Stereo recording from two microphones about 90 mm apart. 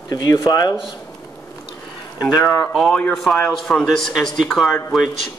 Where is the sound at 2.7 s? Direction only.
Centre (ahead or behind).